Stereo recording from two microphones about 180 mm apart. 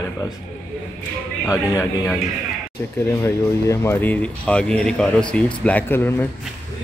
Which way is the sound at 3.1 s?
15° left (ahead or behind).